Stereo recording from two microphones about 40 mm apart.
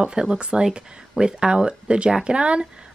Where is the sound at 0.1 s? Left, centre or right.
Right.